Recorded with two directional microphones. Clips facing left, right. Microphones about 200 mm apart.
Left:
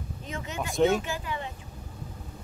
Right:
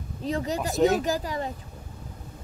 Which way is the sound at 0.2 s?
35° right (ahead or behind).